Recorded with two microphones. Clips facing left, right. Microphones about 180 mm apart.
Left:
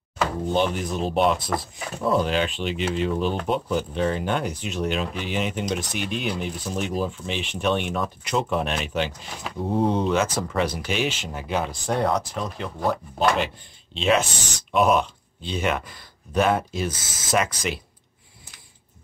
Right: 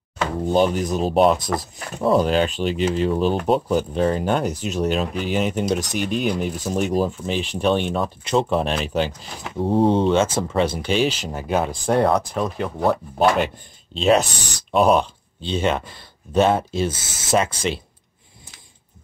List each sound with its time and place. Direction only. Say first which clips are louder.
0.5 s speech: right 7 dB; 40° right (ahead or behind); by 12.9 s 55° right (ahead or behind)
13.9 s speech: right 4 dB; 40° right (ahead or behind)